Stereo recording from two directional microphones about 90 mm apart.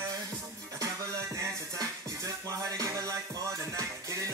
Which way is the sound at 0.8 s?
40° right (ahead or behind).